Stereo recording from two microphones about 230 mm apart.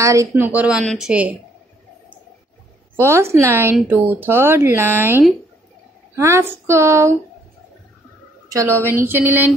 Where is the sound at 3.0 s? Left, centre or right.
Centre.